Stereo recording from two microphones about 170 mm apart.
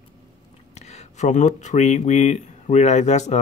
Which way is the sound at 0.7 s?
40° left (ahead or behind).